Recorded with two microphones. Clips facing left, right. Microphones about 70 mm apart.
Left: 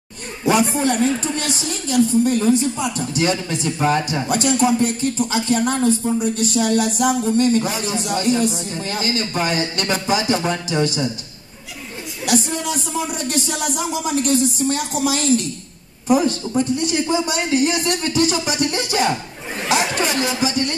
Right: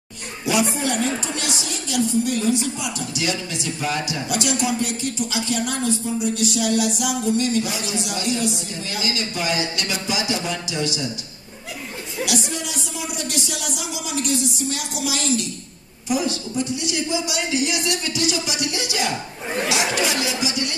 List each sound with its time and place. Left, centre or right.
0.7 s a woman's voice: left
12.3 s a woman's voice: left